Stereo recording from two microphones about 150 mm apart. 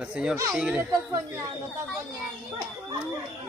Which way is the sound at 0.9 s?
20° right (ahead or behind).